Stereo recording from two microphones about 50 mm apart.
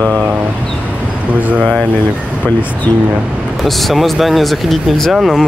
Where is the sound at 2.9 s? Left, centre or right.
Left.